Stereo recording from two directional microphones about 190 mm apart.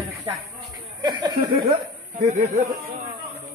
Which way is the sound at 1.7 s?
35° right (ahead or behind).